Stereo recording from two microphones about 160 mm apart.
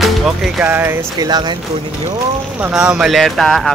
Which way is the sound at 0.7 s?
15° right (ahead or behind).